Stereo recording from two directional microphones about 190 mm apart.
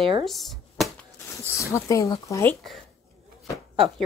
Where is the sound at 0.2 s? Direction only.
Centre (ahead or behind).